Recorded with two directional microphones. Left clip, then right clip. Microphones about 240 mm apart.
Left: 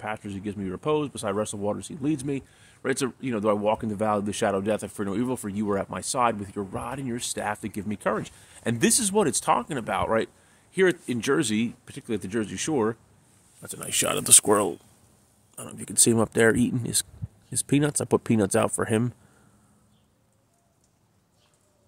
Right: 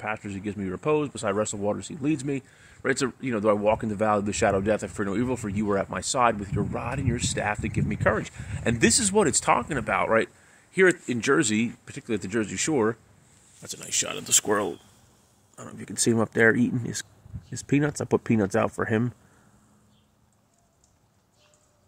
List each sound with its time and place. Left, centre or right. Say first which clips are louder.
0.0 s speech: right 1 dB; centre
13.8 s speech: left 4 dB; left
14.4 s speech: left 3 dB; left
15.5 s speech: left 4 dB; centre